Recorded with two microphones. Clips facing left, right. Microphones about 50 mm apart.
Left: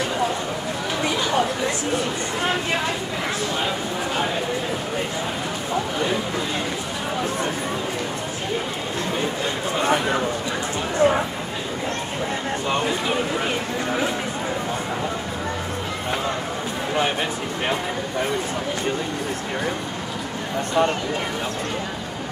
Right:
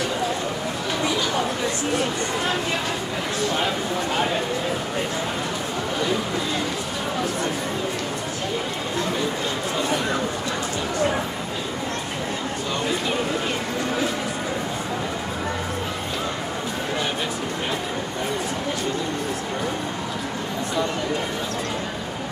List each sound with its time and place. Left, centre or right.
11.0 s bow-wow: left